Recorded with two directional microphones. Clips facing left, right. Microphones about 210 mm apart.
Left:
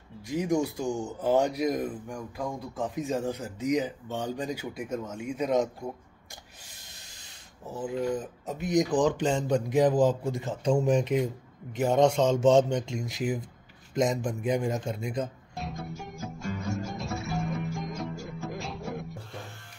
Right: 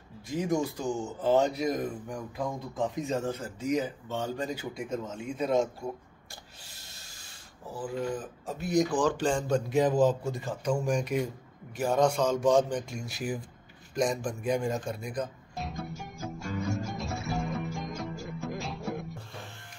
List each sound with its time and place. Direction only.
0.3 s speech: 15° left (ahead or behind)
2.0 s speech: centre (ahead or behind); by 5.9 s 15° left (ahead or behind)
8.5 s a man's voice: 20° left (ahead or behind)
15.5 s music: centre (ahead or behind)